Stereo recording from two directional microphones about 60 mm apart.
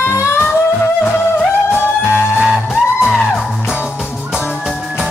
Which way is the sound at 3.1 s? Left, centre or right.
Centre.